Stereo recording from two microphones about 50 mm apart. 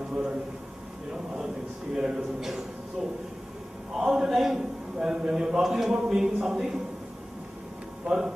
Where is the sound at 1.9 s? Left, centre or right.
Centre.